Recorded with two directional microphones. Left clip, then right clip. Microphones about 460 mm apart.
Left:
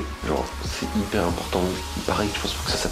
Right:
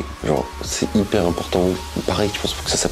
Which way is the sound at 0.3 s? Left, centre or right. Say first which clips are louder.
Right 5 dB; right.